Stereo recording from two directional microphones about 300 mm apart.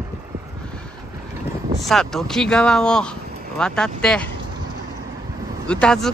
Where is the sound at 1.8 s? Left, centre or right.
Centre.